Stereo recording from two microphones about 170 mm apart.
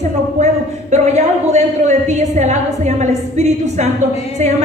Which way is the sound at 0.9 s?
40° right (ahead or behind).